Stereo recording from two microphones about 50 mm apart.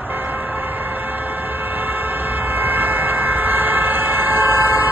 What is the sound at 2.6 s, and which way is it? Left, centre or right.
Vehicle, right.